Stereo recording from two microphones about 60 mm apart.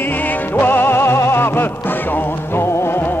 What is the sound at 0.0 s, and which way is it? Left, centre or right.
Music, left.